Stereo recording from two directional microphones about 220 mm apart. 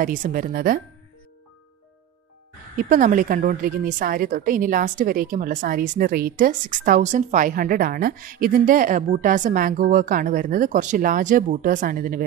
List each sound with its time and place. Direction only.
0.0 s a woman's voice: 40° right (ahead or behind)
2.7 s a woman's voice: 35° right (ahead or behind)